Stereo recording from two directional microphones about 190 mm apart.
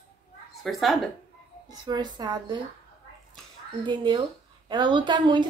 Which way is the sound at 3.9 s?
25° right (ahead or behind).